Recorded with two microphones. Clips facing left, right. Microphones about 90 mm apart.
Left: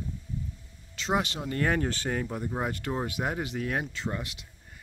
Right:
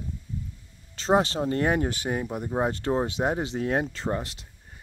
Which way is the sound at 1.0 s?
35° right (ahead or behind).